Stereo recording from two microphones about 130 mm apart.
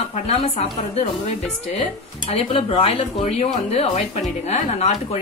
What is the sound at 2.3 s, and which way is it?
A woman's voice, 50° left (ahead or behind).